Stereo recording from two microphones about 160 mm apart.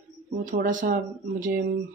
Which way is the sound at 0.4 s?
55° right (ahead or behind).